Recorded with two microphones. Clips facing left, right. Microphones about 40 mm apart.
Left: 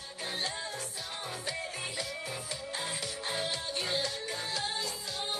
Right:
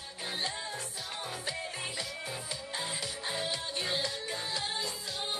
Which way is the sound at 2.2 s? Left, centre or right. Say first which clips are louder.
Even; right.